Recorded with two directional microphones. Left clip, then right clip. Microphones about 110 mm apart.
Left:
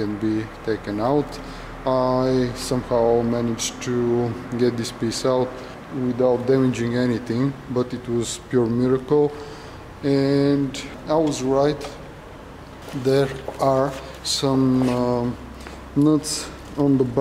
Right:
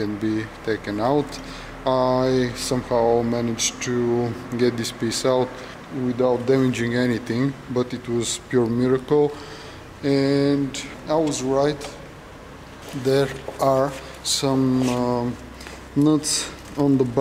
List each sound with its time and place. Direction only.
0.0 s speech: 10° right (ahead or behind)
13.0 s speech: 5° right (ahead or behind)